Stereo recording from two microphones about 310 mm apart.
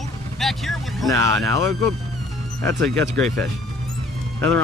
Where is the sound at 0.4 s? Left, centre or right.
Centre.